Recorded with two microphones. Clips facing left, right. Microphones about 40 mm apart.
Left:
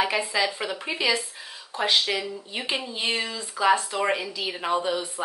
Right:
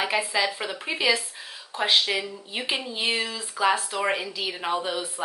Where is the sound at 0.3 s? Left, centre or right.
Centre.